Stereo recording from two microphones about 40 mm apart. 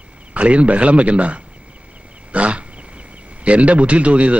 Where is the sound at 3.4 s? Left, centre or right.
Right.